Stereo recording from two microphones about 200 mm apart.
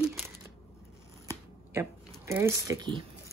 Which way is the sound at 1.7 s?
15° right (ahead or behind).